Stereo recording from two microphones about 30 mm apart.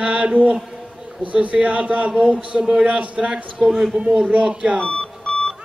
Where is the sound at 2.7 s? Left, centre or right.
Right.